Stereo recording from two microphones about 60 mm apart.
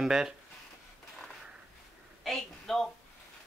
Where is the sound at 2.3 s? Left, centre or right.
Centre.